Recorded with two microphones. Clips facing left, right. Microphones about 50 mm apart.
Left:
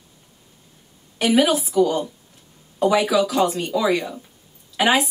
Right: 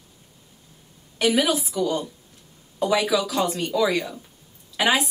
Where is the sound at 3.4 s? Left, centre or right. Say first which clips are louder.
Left 2 dB; centre.